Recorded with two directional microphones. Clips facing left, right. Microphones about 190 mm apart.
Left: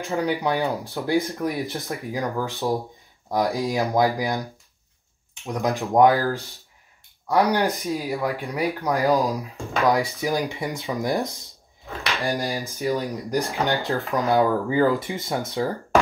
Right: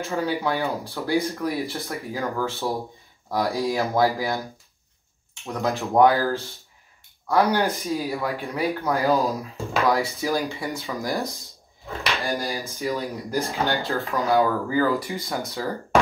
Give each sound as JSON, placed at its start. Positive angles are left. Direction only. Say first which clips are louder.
{"t": 0.0, "sound": "speech", "louder": "left 1 dB", "side_deg": 15}